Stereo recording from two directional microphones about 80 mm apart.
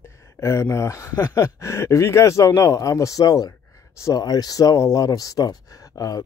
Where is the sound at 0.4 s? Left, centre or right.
Left.